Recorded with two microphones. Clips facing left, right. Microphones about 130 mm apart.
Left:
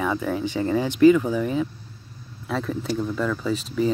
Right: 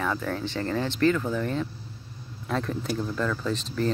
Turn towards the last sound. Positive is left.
turn(degrees=5)  # may be behind; listen again after turning